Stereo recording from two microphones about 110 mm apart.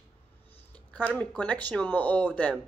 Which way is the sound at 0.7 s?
15° left (ahead or behind).